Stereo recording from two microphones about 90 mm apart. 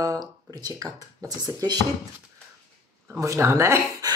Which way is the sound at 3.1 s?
35° right (ahead or behind).